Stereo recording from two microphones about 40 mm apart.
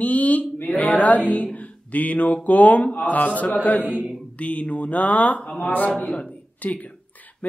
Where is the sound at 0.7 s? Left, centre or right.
Left.